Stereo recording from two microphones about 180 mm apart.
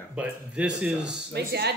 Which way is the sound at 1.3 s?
65° right (ahead or behind).